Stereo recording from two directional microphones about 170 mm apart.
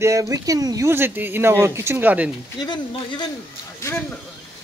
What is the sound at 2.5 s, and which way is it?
Speech, 25° left (ahead or behind).